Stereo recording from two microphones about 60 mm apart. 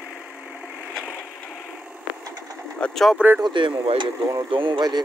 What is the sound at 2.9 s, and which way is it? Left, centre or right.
Speech, centre.